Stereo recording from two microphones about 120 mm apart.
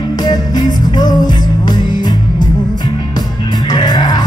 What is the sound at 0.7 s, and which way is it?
Music, 35° left (ahead or behind).